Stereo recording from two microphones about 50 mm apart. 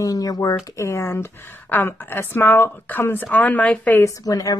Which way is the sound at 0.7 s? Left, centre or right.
Left.